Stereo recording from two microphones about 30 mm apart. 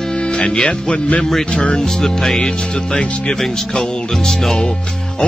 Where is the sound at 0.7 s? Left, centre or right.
Left.